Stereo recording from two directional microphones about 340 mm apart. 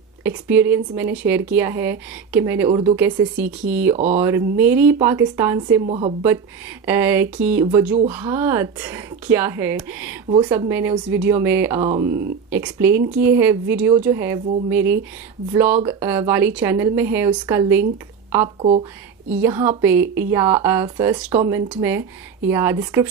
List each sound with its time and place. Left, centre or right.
0.5 s speech: centre
3.9 s speech: centre
4.2 s speech: centre
19.4 s speech: centre